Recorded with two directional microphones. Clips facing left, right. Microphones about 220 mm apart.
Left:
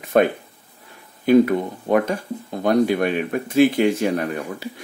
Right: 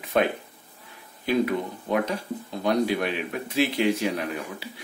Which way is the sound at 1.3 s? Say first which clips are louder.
Left 9 dB; 50° left (ahead or behind).